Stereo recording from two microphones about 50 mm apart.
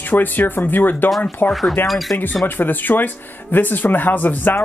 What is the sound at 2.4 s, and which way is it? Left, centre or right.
Speech, left.